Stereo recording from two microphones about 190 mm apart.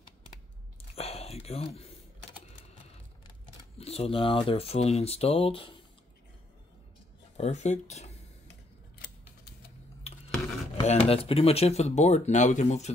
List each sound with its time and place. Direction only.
0.9 s a sound: 30° left (ahead or behind)
3.7 s speech: 30° left (ahead or behind)
7.3 s speech: 35° left (ahead or behind)
10.8 s speech: 35° left (ahead or behind)